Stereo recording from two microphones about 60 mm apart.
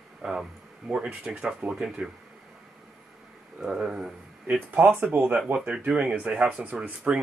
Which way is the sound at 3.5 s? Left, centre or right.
Centre.